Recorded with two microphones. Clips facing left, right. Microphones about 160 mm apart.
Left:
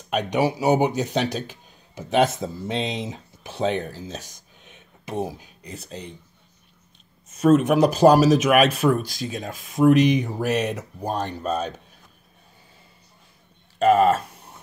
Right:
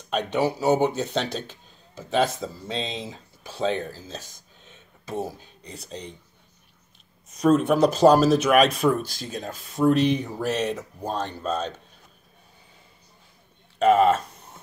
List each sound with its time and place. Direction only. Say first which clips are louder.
0.1 s speech: left 2 dB; 10° left (ahead or behind)
7.3 s speech: left 2 dB; 5° left (ahead or behind)
13.7 s speech: left 1 dB; 5° left (ahead or behind)